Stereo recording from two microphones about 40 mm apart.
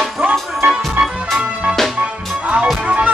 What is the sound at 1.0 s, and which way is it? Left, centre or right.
Music, right.